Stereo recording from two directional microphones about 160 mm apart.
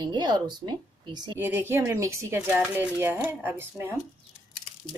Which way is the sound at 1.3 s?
15° right (ahead or behind).